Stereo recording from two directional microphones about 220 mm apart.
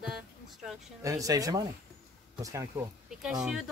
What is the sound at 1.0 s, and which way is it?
Speech, 15° right (ahead or behind).